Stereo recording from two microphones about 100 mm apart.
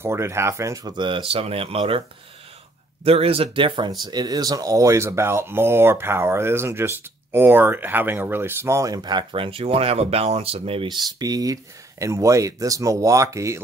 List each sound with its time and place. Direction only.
0.0 s speech: 25° right (ahead or behind)
0.9 s speech: 55° right (ahead or behind)
1.3 s speech: 75° right (ahead or behind); by 3.9 s 55° right (ahead or behind)
4.0 s speech: 45° right (ahead or behind)
9.3 s speech: 65° right (ahead or behind)
10.9 s speech: 40° right (ahead or behind)